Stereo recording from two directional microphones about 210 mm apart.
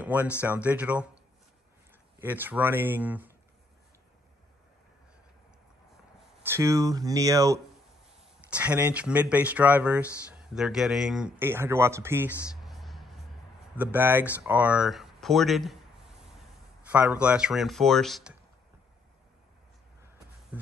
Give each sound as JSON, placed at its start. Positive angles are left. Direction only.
{"t": 0.0, "sound": "speech", "side_deg": -10}
{"t": 2.1, "sound": "speech", "side_deg": -10}
{"t": 6.4, "sound": "speech", "side_deg": -15}
{"t": 16.8, "sound": "speech", "side_deg": -5}